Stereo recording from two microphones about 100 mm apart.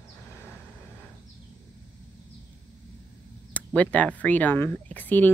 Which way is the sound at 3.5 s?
15° left (ahead or behind).